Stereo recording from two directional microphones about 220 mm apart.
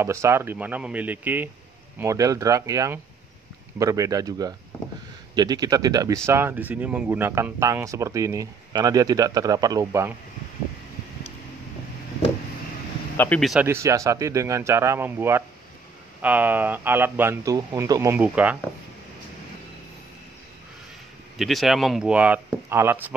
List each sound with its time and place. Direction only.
0.0 s speech: 10° right (ahead or behind)
13.2 s speech: 5° left (ahead or behind)
21.4 s speech: centre (ahead or behind)